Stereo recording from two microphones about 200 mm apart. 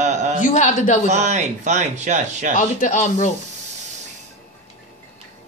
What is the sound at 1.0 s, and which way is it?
Speech, 35° right (ahead or behind).